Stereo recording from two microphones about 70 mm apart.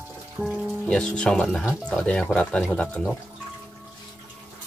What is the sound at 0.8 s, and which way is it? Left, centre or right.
Speech, centre.